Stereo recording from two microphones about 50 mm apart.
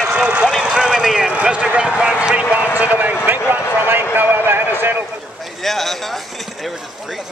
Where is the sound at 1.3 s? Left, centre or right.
Right.